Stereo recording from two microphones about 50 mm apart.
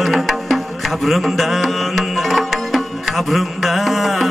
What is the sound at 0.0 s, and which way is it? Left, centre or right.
Music, centre.